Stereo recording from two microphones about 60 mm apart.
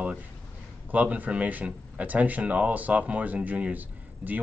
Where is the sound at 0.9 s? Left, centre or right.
Right.